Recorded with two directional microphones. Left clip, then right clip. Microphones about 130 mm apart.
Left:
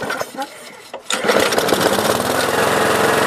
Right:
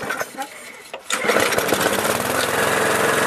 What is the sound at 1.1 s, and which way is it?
Sewing machine, centre (ahead or behind).